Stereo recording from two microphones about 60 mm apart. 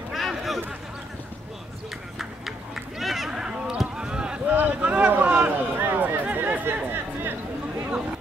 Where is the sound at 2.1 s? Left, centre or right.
Centre.